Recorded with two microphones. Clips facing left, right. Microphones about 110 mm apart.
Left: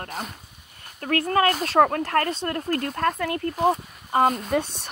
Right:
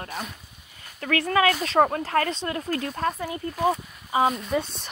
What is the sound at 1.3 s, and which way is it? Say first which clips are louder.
Speech: even; 40° left (ahead or behind).